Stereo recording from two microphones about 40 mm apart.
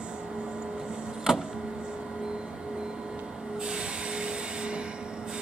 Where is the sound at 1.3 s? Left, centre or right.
Centre.